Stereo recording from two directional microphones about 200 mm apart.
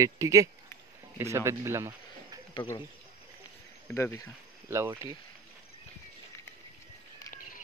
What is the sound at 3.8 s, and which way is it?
Speech, 10° left (ahead or behind).